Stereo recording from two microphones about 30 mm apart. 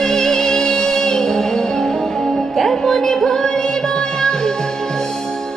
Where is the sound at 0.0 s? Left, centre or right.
Centre.